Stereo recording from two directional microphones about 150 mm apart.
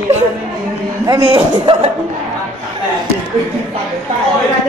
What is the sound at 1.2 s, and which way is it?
Speech, 35° right (ahead or behind).